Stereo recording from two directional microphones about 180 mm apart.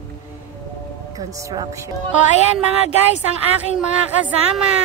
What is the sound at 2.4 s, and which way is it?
Speech, 35° left (ahead or behind).